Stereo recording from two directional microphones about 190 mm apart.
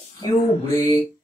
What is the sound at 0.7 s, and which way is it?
Music, 20° left (ahead or behind).